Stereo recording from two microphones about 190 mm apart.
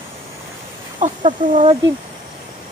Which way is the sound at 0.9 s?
40° right (ahead or behind).